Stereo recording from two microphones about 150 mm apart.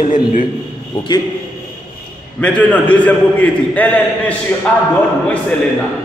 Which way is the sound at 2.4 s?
10° left (ahead or behind).